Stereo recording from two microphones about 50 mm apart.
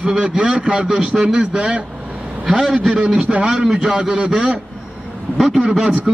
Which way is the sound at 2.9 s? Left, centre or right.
Centre.